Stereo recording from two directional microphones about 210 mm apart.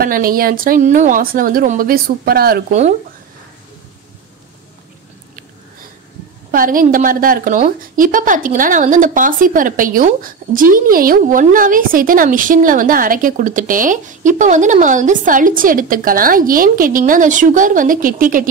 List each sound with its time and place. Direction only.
0.0 s a woman's voice: 45° right (ahead or behind)
6.5 s a woman's voice: 40° right (ahead or behind)